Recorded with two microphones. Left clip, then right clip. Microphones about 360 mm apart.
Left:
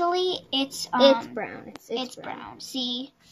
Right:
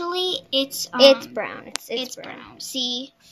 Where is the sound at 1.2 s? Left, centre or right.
Right.